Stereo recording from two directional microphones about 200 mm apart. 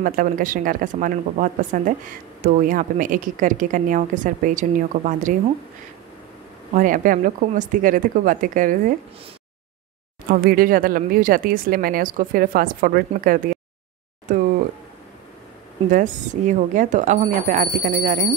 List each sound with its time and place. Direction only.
0.0 s a woman's voice: 45° right (ahead or behind)
6.7 s a woman's voice: 40° right (ahead or behind)
10.3 s speech: 45° right (ahead or behind)
15.9 s a woman's voice: 40° right (ahead or behind)